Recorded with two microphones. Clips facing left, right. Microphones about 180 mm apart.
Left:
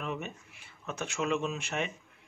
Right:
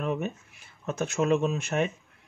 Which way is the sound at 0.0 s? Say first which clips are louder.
Right 7 dB; 45° right (ahead or behind).